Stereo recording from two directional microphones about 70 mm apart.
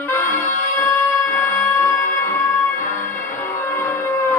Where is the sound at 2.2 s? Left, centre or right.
Left.